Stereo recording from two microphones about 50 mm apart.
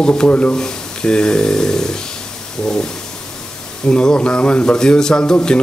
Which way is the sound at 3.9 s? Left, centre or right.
Centre.